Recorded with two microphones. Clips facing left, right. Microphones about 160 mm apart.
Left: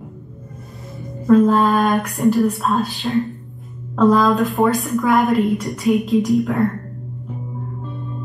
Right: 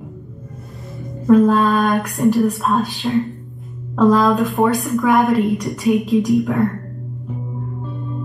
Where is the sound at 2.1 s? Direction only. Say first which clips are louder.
Right 2 dB; 20° right (ahead or behind).